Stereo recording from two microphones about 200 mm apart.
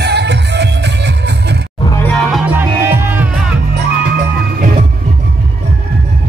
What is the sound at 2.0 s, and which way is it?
Music, centre (ahead or behind).